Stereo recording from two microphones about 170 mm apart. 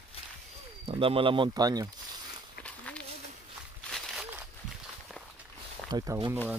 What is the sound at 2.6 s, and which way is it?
Walk, 5° left (ahead or behind).